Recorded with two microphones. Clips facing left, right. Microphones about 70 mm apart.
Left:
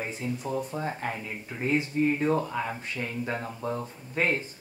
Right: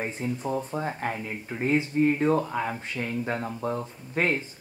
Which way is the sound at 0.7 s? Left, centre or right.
Centre.